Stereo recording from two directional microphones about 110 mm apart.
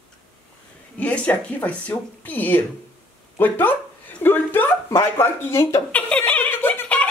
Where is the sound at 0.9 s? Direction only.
10° left (ahead or behind).